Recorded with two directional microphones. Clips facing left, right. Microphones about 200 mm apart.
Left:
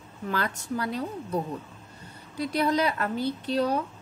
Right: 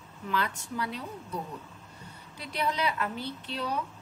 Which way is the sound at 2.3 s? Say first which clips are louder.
Left 7 dB; 40° left (ahead or behind).